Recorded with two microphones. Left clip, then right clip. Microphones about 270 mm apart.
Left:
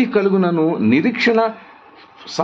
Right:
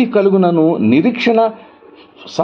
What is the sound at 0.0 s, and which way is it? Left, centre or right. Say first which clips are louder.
A man's voice: right 4 dB; centre.